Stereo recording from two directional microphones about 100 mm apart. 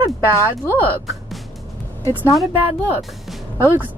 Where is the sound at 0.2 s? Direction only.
25° right (ahead or behind).